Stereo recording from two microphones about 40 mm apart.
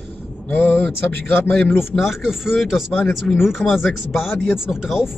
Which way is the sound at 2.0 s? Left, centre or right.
Centre.